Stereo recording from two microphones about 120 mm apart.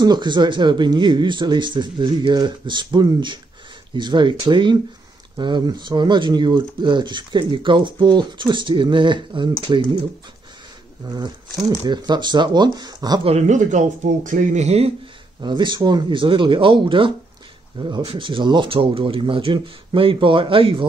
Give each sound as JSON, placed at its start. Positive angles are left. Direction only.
{"t": 0.0, "sound": "speech", "side_deg": -35}
{"t": 11.1, "sound": "speech", "side_deg": -35}
{"t": 13.5, "sound": "speech", "side_deg": -90}
{"t": 15.4, "sound": "speech", "side_deg": -40}